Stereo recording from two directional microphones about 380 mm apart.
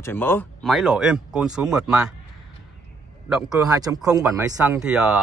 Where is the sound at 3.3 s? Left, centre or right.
Centre.